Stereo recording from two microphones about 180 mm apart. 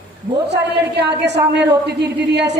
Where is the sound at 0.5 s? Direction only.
70° right (ahead or behind).